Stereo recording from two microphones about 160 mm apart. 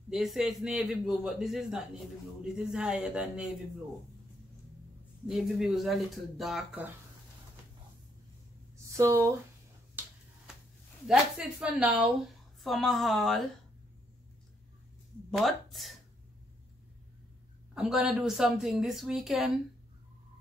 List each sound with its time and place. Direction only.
0.1 s a woman's voice: centre (ahead or behind)
5.2 s a woman's voice: centre (ahead or behind)
8.7 s a sound: 20° right (ahead or behind)
10.0 s finger snapping: 10° right (ahead or behind)
11.1 s a woman's voice: 5° right (ahead or behind)
15.3 s a woman's voice: centre (ahead or behind)
17.7 s a woman's voice: 5° right (ahead or behind)